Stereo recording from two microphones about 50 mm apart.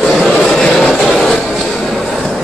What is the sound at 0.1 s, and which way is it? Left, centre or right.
Vehicle, centre.